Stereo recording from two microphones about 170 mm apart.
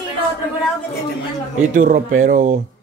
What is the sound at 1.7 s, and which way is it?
Speech, 50° right (ahead or behind).